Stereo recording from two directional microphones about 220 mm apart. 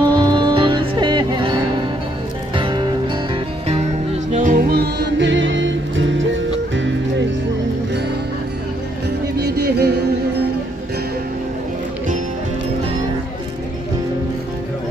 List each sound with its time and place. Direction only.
0.0 s music: 20° right (ahead or behind); by 7.2 s 55° right (ahead or behind)
9.4 s music: 50° right (ahead or behind)